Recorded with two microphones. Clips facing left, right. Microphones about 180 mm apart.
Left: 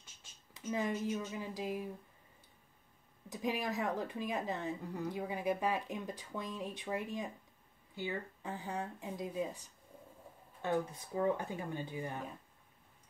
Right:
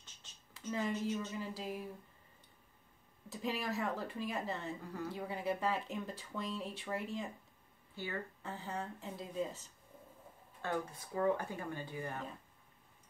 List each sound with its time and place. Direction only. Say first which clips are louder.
0.0 s speech: even; 10° left (ahead or behind)
3.3 s speech: left 2 dB; 15° left (ahead or behind)